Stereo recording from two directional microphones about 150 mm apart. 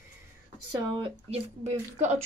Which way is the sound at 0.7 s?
40° right (ahead or behind).